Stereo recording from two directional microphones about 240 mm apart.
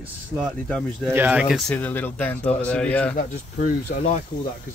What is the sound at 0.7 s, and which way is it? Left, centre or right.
A man's voice, centre.